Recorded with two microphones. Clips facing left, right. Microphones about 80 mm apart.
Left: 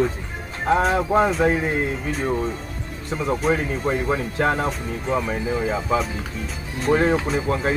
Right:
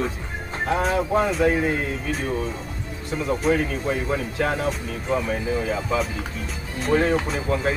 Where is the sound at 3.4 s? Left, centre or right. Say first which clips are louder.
Even; left.